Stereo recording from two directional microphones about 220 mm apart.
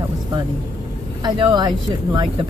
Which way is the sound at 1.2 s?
20° right (ahead or behind).